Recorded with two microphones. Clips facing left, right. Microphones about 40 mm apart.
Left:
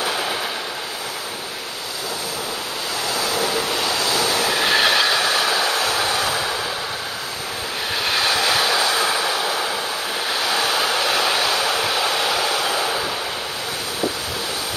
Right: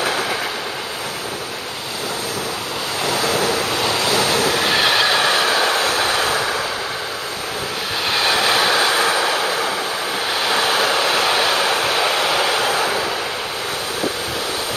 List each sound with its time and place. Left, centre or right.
3.1 s vehicle: right
3.7 s waves: right
4.1 s train: right
4.6 s train: centre
5.1 s train: right
5.9 s train: right
8.1 s train: centre
8.4 s train: right
10.5 s vehicle: right